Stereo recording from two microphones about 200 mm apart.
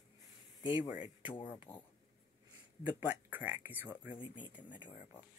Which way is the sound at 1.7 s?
10° left (ahead or behind).